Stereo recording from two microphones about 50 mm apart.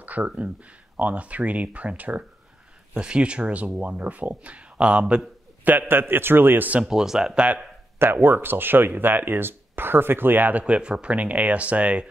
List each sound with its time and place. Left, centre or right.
0.0 s a sound: right
0.9 s speech: right
2.9 s speech: centre
5.7 s speech: right
6.8 s speech: centre
7.3 s speech: right
8.0 s speech: right
10.6 s speech: right